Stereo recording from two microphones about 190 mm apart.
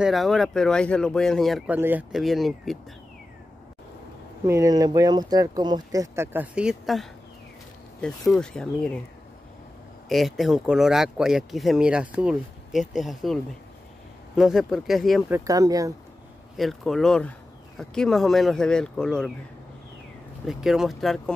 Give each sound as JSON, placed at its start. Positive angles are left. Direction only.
{"t": 0.0, "sound": "speech", "side_deg": 0}
{"t": 1.8, "sound": "speech", "side_deg": -10}
{"t": 4.5, "sound": "speech", "side_deg": -15}
{"t": 10.0, "sound": "speech", "side_deg": 0}
{"t": 15.2, "sound": "speech", "side_deg": -15}
{"t": 16.5, "sound": "speech", "side_deg": 0}
{"t": 20.4, "sound": "speech", "side_deg": 0}